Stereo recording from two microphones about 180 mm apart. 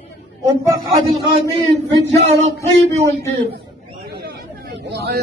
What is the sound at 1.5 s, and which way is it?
Speech, 25° right (ahead or behind).